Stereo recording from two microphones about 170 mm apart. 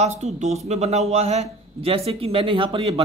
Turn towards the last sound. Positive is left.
turn(degrees=-30)  # may be behind; listen again after turning